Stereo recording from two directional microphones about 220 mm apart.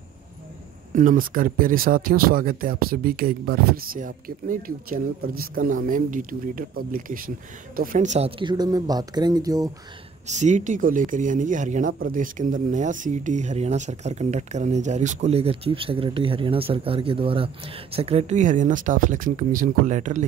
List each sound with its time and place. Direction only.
0.9 s speech: 40° right (ahead or behind); by 9.7 s 15° right (ahead or behind)
10.2 s speech: 35° right (ahead or behind)